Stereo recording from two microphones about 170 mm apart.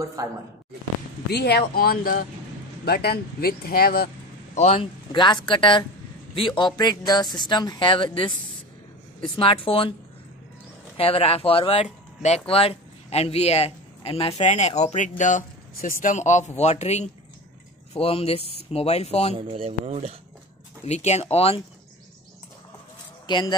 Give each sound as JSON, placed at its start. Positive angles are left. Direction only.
{"t": 0.0, "sound": "speech", "side_deg": -20}
{"t": 1.3, "sound": "speech", "side_deg": 70}
{"t": 4.6, "sound": "speech", "side_deg": 35}
{"t": 9.4, "sound": "speech", "side_deg": 30}
{"t": 11.0, "sound": "a man's voice", "side_deg": 35}
{"t": 19.3, "sound": "speech", "side_deg": -35}
{"t": 20.8, "sound": "speech", "side_deg": 40}
{"t": 23.2, "sound": "speech", "side_deg": 25}